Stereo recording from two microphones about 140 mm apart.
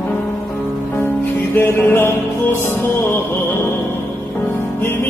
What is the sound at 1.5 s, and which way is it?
Music, 15° left (ahead or behind).